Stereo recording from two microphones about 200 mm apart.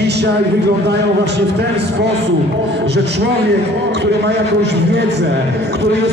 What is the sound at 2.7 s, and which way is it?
A man's voice, 55° right (ahead or behind).